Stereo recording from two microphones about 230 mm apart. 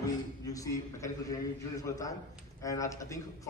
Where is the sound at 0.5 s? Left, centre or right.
Centre.